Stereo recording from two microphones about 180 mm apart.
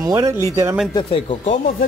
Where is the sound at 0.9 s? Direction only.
30° left (ahead or behind).